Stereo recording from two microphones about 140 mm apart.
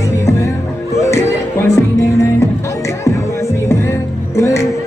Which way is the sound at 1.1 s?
20° left (ahead or behind).